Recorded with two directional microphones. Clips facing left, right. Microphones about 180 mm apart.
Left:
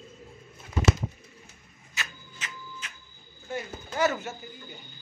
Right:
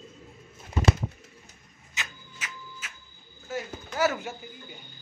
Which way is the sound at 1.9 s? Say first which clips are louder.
Left 1 dB; 20° right (ahead or behind).